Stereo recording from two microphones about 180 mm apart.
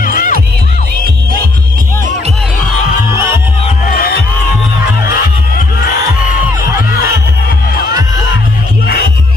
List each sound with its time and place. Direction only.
0.0 s music: 50° left (ahead or behind)
3.9 s music: 55° left (ahead or behind)